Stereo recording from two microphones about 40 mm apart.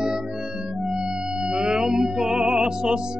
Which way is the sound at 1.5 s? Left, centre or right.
Centre.